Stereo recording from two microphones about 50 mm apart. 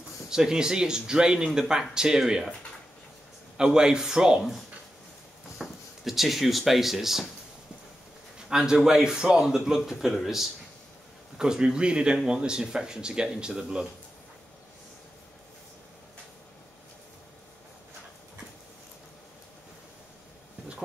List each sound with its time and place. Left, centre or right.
0.3 s speech: centre
3.5 s speech: centre
5.6 s speech: centre
8.5 s speech: centre